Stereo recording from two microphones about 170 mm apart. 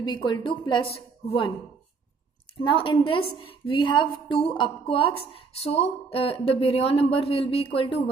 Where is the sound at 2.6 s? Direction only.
30° left (ahead or behind).